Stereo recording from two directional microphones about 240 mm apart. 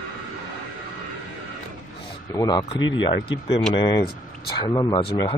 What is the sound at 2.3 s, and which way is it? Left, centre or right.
Speech, centre.